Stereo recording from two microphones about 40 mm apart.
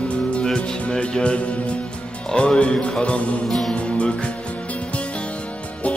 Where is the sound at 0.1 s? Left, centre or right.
Left.